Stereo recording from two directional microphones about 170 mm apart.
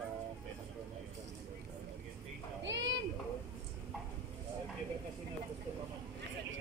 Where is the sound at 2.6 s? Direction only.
90° right.